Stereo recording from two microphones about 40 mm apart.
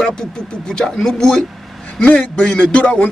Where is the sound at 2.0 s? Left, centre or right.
Left.